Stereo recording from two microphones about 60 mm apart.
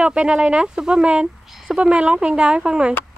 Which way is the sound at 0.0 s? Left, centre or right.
Centre.